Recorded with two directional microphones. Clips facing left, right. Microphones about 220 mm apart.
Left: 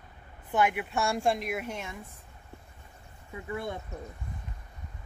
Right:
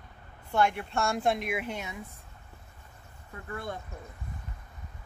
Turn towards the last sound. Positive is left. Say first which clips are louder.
# left 3 dB
turn(degrees=15)  # may be behind; listen again after turning